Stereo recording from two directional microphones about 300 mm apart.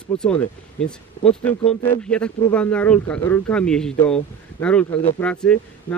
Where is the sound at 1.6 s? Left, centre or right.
Left.